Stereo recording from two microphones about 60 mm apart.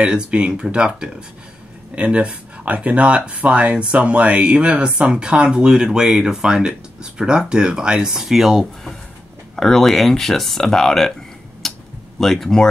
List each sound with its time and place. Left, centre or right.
0.0 s speech: centre
11.6 s a sound: centre
12.2 s speech: centre